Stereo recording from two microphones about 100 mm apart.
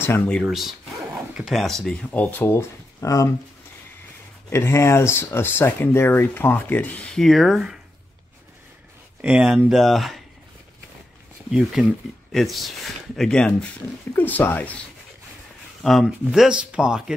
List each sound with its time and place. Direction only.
0.5 s a sound: 5° right (ahead or behind)
1.5 s speech: 5° left (ahead or behind)
2.0 s speech: 15° left (ahead or behind)
2.5 s speech: 35° left (ahead or behind)
4.5 s speech: 30° left (ahead or behind); by 7.8 s 5° right (ahead or behind)
9.2 s speech: 10° right (ahead or behind)
11.8 s speech: 5° right (ahead or behind); by 14.8 s 15° left (ahead or behind)
15.8 s speech: centre (ahead or behind)